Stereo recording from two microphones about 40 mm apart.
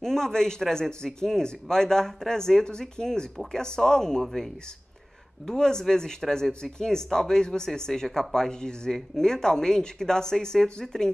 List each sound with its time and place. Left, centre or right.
0.0 s speech: centre
5.5 s speech: centre